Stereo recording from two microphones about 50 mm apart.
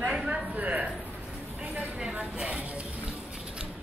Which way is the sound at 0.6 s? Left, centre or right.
Right.